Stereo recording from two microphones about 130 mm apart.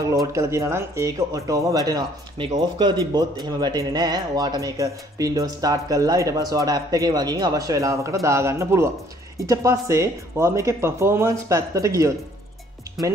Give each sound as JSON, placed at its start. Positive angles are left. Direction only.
{"t": 0.3, "sound": "speech", "side_deg": -25}